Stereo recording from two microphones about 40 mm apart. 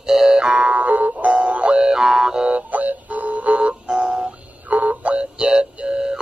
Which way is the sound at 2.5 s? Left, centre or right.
Right.